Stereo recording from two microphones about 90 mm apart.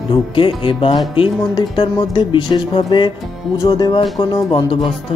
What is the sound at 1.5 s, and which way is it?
Speech, 50° left (ahead or behind).